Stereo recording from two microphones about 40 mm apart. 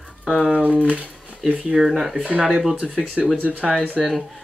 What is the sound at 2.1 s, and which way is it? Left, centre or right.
Speech, right.